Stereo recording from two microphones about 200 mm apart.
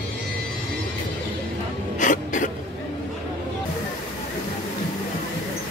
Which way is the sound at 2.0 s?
40° left (ahead or behind).